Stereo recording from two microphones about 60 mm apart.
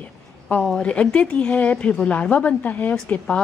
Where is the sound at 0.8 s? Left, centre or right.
Centre.